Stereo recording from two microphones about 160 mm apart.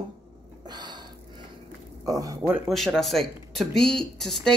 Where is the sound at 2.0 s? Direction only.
20° right (ahead or behind).